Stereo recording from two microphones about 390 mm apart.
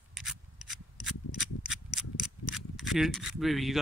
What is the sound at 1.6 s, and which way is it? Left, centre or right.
Mechanisms, centre.